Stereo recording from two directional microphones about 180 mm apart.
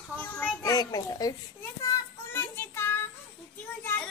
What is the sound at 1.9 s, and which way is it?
Child singing, 10° left (ahead or behind).